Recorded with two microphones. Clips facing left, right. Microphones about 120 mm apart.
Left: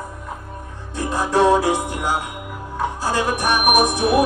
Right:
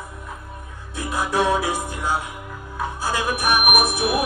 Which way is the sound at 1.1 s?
30° left (ahead or behind).